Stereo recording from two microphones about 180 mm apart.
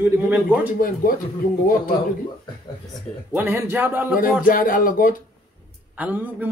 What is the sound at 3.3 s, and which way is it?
Speech, 10° right (ahead or behind).